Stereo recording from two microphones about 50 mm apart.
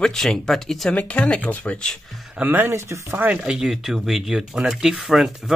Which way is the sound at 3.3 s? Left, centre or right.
Centre.